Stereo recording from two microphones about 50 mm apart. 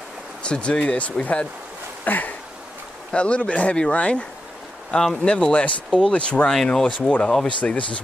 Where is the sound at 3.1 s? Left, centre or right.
Left.